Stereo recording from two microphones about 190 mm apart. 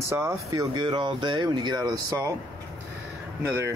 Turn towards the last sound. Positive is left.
turn(degrees=-15)  # may be behind; listen again after turning